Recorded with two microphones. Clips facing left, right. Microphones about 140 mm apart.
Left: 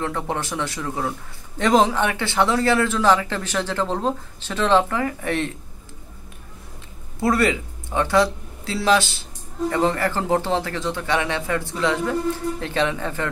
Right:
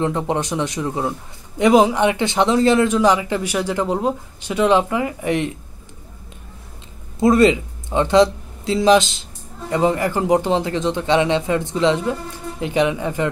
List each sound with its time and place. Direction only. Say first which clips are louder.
0.0 s a man's voice: right 5 dB; 20° right (ahead or behind)
7.2 s speech: right 6 dB; 20° right (ahead or behind)